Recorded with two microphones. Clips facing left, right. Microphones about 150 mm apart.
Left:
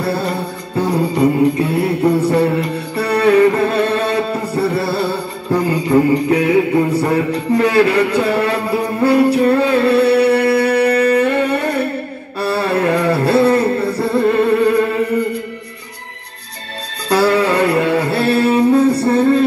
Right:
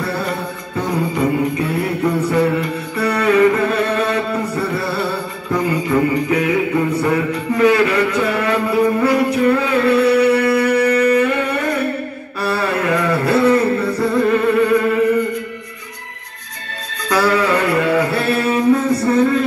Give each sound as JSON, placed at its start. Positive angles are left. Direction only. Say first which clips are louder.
{"t": 0.0, "sound": "music", "louder": "left 3 dB", "side_deg": 35}
{"t": 12.4, "sound": "a sound", "louder": "left 3 dB", "side_deg": 30}
{"t": 17.1, "sound": "music", "louder": "left 2 dB", "side_deg": 30}